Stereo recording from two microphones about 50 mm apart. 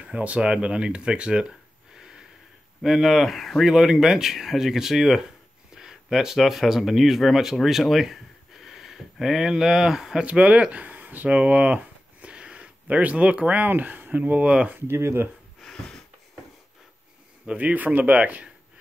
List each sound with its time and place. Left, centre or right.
0.0 s speech: right
2.8 s speech: centre
3.6 s speech: centre
5.8 s a sound: centre
6.4 s speech: centre
10.2 s speech: right
11.2 s a sound: right
13.7 s speech: right
14.4 s speech: centre
14.9 s speech: right
17.6 s speech: right